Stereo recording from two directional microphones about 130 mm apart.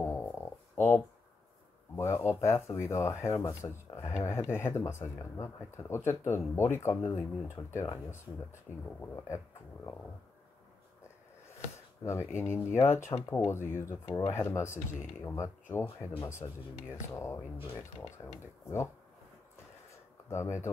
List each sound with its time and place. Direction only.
0.0 s a sound: 20° left (ahead or behind)
2.0 s speech: 20° left (ahead or behind)
12.0 s speech: 20° left (ahead or behind)
18.2 s speech: 35° left (ahead or behind)
20.2 s speech: 20° left (ahead or behind)